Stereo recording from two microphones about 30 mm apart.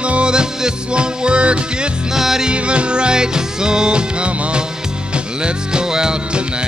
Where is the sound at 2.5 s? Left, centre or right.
Right.